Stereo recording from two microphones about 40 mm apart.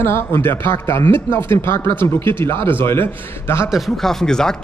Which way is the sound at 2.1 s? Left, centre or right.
Left.